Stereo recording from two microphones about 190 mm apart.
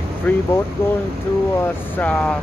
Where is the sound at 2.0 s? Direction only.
10° left (ahead or behind).